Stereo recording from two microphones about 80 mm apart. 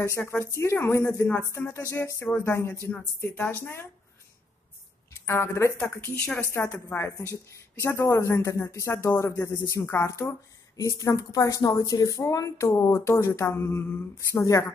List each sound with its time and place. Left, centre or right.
0.0 s a woman's voice: left
5.2 s speech: left
5.9 s a woman's voice: left
7.0 s speech: left
14.4 s a woman's voice: left